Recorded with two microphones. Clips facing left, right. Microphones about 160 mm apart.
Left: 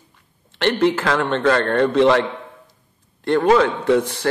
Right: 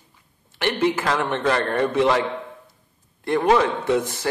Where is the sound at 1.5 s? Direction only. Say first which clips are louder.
Left 4 dB; 70° left (ahead or behind).